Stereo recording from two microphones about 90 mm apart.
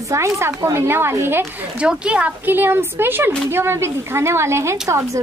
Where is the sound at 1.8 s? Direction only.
10° right (ahead or behind); by 5.2 s 35° right (ahead or behind).